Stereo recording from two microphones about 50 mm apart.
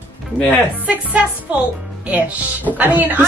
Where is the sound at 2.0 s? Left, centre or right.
Right.